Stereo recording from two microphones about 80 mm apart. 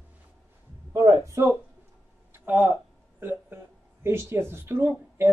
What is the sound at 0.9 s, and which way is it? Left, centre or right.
Speech, right.